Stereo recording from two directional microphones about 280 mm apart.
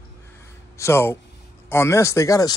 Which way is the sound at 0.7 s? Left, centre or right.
Centre.